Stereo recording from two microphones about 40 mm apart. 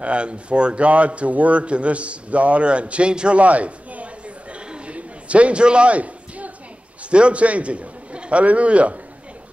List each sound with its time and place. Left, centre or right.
0.0 s a man's voice: right
4.6 s a sound: right
7.1 s a man's voice: right